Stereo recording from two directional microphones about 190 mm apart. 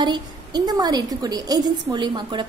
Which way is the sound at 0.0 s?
20° right (ahead or behind).